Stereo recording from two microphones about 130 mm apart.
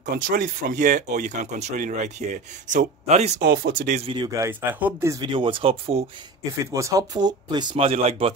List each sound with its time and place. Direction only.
0.1 s speech: 90° right; by 4.0 s 65° right (ahead or behind)
4.0 s speech: 35° right (ahead or behind)
4.4 s speech: 15° right (ahead or behind)
5.2 s speech: 40° right (ahead or behind)
6.6 s speech: 25° right (ahead or behind)
7.8 s speech: 50° right (ahead or behind)